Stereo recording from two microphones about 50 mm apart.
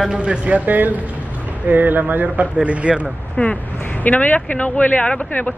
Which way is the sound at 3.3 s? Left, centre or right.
Left.